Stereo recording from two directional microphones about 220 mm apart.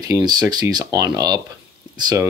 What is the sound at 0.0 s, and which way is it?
Speech, 20° right (ahead or behind).